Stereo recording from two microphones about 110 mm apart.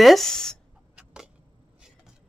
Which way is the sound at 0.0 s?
Centre (ahead or behind).